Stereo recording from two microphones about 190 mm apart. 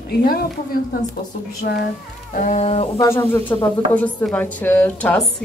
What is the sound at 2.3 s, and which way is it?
Chicken, 40° left (ahead or behind).